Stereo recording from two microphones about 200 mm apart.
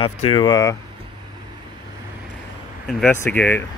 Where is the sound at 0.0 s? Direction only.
25° left (ahead or behind).